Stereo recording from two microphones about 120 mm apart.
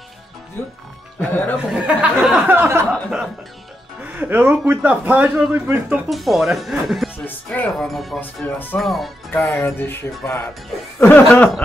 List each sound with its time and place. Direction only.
1.3 s speech: 15° left (ahead or behind)
1.7 s a man's voice: 10° right (ahead or behind)
2.9 s speech: centre (ahead or behind)
4.0 s a man's voice: 15° right (ahead or behind)
6.0 s speech: centre (ahead or behind)
7.2 s speech: 15° left (ahead or behind)
7.7 s speech: centre (ahead or behind)
8.2 s speech: 15° left (ahead or behind)
8.7 s speech: centre (ahead or behind)
9.3 s music: 20° left (ahead or behind)
11.0 s speech: 15° left (ahead or behind)